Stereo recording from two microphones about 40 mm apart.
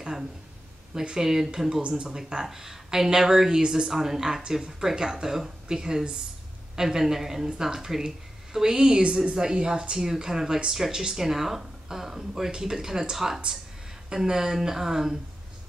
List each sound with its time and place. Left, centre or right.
1.2 s speech: centre
1.8 s a woman's voice: right
2.4 s a woman's voice: centre